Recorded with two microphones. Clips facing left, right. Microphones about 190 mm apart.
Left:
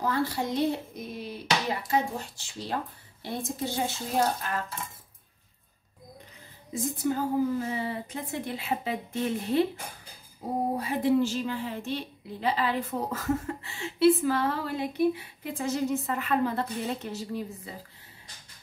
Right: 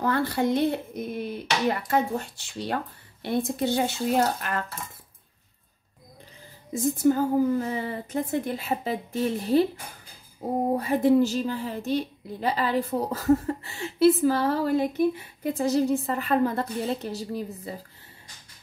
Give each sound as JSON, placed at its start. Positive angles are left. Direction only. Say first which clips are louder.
{"t": 0.0, "sound": "speech", "louder": "right 4 dB", "side_deg": -60}
{"t": 6.7, "sound": "a woman's voice", "louder": "right 7 dB", "side_deg": -45}
{"t": 10.8, "sound": "a woman's voice", "louder": "right 5 dB", "side_deg": -45}